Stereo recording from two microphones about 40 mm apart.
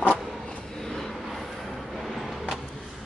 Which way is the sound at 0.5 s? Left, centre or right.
Centre.